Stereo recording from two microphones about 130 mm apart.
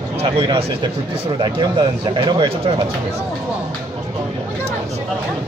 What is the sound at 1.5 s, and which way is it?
Speech, 40° right (ahead or behind).